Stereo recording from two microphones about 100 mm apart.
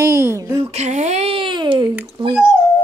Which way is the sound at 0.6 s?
90° right.